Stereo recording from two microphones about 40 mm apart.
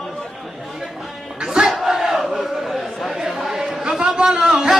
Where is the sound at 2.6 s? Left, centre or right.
Centre.